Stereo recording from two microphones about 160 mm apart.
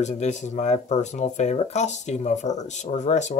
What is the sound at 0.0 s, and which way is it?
Speech, 45° left (ahead or behind).